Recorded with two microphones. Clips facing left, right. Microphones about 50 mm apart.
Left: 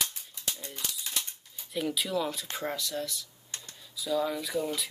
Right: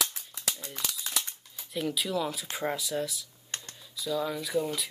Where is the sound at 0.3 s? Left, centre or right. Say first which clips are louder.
Right 2 dB; right.